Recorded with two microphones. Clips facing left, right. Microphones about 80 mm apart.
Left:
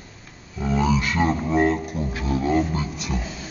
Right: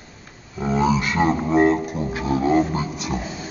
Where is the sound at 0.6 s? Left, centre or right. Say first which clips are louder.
Right 2 dB; right.